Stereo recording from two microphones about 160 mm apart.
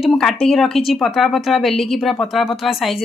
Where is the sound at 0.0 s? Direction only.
Centre (ahead or behind).